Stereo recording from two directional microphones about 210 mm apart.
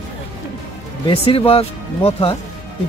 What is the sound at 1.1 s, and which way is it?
Speech, 25° left (ahead or behind).